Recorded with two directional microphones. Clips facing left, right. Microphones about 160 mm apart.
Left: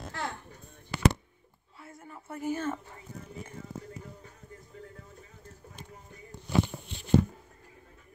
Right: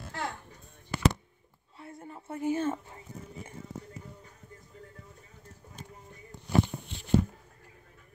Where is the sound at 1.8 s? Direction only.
30° right (ahead or behind).